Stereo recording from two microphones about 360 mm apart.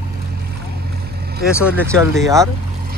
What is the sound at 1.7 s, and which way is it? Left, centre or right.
Speech, centre.